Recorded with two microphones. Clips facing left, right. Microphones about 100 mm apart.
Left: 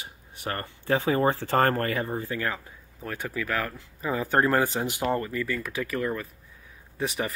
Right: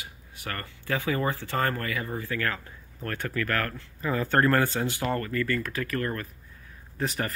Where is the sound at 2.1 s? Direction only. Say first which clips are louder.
Left 1 dB; 25° left (ahead or behind).